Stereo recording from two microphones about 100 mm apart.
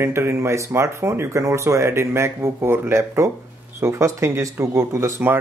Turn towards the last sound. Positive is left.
turn(degrees=-20)  # may be behind; listen again after turning